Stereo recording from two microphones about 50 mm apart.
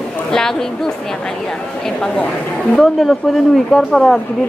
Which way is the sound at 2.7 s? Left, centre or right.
Centre.